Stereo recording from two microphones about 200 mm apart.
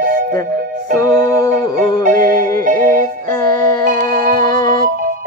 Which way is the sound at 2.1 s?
45° right (ahead or behind).